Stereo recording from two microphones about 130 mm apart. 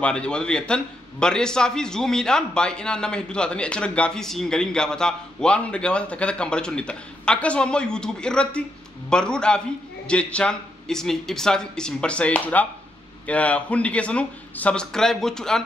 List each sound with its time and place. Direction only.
0.0 s a man's voice: 10° left (ahead or behind)